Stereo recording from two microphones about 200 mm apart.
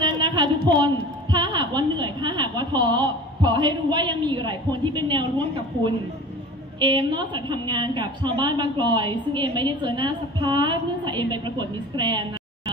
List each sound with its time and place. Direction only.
0.0 s a woman's voice: 25° right (ahead or behind)
6.8 s a woman's voice: 25° right (ahead or behind)